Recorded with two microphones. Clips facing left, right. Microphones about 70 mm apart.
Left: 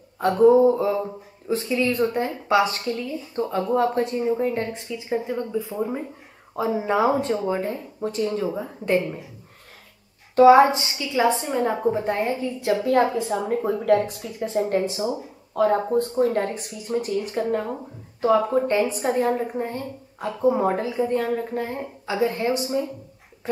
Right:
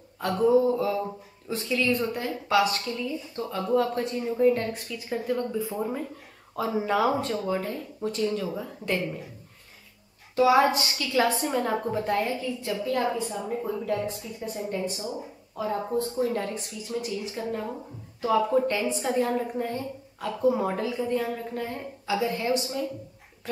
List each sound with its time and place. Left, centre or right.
0.2 s speech: left
10.3 s speech: left
12.6 s speech: left
13.3 s speech: left
15.9 s speech: left
23.4 s a sound: left